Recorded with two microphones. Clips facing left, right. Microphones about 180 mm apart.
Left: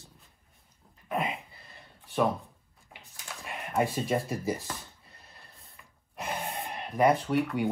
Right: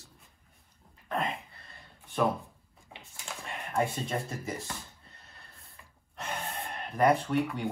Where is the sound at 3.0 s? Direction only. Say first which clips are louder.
Even; 5° left (ahead or behind).